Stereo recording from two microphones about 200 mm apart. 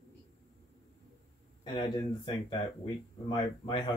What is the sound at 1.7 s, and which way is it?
Speech, 20° left (ahead or behind).